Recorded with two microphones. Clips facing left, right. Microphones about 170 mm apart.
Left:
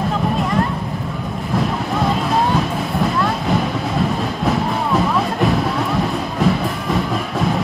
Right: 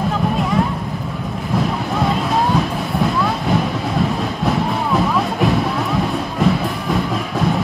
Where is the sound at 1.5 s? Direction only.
Centre (ahead or behind).